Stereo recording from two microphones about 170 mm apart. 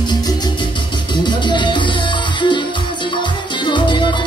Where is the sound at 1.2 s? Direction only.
25° left (ahead or behind).